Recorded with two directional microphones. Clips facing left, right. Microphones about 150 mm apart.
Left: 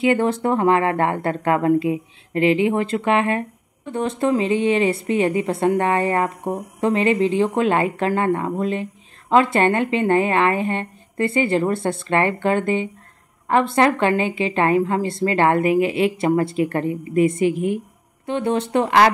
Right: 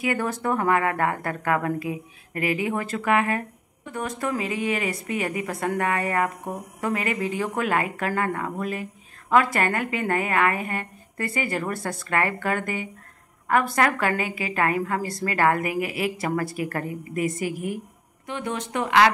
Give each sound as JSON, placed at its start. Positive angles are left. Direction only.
{"t": 0.0, "sound": "a woman's voice", "side_deg": 25}